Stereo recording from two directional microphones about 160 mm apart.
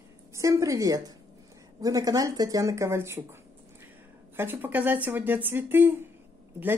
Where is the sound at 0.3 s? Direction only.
20° right (ahead or behind).